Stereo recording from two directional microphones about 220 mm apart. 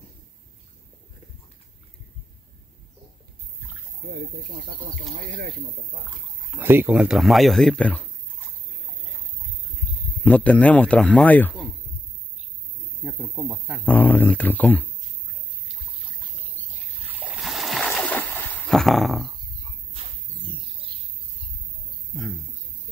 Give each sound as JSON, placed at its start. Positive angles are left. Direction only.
{"t": 5.1, "sound": "speech", "side_deg": -40}
{"t": 6.5, "sound": "speech", "side_deg": -10}
{"t": 10.2, "sound": "a man's voice", "side_deg": 5}
{"t": 13.0, "sound": "speech", "side_deg": -5}
{"t": 13.8, "sound": "a man's voice", "side_deg": 10}
{"t": 16.5, "sound": "splash", "side_deg": -10}
{"t": 19.9, "sound": "a sound", "side_deg": -25}
{"t": 22.1, "sound": "a sound", "side_deg": 0}